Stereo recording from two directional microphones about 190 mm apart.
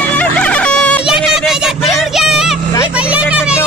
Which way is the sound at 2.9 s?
5° right (ahead or behind).